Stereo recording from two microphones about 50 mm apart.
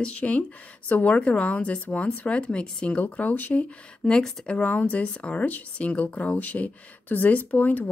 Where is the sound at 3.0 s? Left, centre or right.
Left.